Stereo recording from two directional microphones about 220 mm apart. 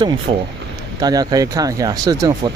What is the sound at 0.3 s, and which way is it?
Speech, 25° right (ahead or behind).